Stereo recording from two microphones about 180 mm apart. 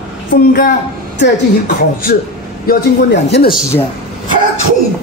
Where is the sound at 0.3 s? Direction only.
55° left (ahead or behind).